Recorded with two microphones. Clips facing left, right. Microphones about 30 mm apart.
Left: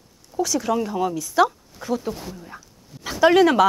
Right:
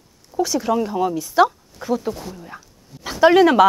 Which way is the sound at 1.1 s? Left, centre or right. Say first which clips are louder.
Right 3 dB; centre.